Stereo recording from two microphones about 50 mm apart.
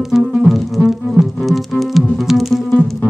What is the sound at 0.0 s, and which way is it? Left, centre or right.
Music, centre.